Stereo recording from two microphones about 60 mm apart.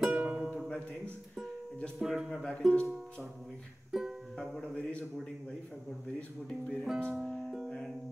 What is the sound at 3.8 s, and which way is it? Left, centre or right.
Music, centre.